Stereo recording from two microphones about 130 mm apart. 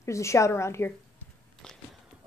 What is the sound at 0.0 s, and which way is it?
Speech, 20° left (ahead or behind).